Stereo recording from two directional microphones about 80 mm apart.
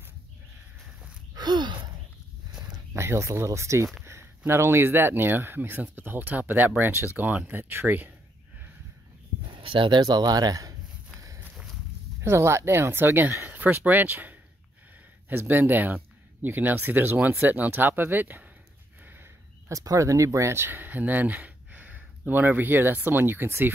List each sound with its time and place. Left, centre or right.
1.3 s gasp: right
2.9 s speech: right
4.0 s a sound: right
4.5 s speech: right
9.5 s a sound: right
12.2 s speech: right
19.7 s speech: right